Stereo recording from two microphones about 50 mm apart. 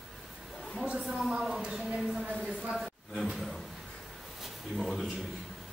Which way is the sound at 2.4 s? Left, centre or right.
Right.